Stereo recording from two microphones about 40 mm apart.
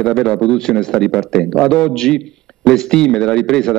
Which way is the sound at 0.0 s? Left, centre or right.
Centre.